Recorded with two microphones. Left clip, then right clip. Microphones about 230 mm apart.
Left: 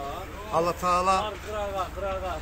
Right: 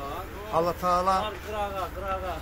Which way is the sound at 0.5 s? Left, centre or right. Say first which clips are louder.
Even; centre.